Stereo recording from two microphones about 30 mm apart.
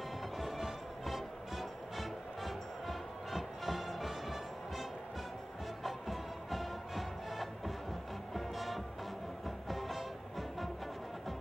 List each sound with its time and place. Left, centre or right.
0.4 s music: centre
5.9 s music: centre